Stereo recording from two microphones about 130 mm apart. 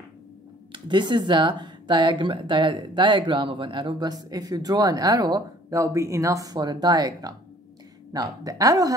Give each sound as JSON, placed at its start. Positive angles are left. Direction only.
{"t": 0.7, "sound": "a woman's voice", "side_deg": -35}